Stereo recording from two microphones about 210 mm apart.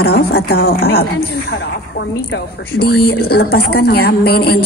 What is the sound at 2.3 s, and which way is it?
Speech, 50° left (ahead or behind).